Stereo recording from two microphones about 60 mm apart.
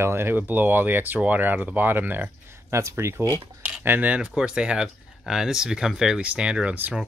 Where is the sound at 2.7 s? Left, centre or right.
Right.